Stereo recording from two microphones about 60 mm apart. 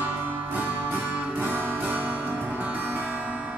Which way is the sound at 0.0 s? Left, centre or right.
Right.